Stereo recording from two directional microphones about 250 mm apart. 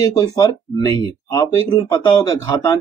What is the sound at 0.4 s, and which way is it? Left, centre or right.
Speech, centre.